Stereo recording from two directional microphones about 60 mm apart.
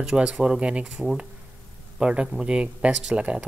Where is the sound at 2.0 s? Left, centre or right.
Centre.